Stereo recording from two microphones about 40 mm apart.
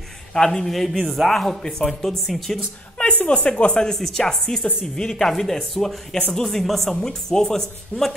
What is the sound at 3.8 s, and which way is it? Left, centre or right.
Speech, centre.